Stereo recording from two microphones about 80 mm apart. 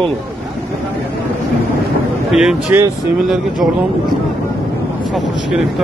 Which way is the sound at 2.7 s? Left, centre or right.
Right.